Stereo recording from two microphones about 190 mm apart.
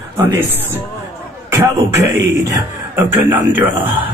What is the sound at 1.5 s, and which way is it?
Speech, 15° right (ahead or behind).